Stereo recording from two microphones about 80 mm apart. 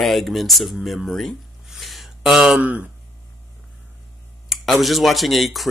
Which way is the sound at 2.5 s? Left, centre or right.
Centre.